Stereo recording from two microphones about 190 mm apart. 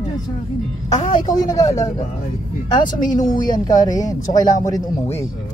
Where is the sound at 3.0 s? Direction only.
45° left (ahead or behind).